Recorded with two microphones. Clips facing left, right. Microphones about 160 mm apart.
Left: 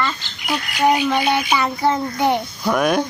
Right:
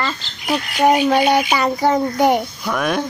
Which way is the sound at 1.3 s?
40° right (ahead or behind).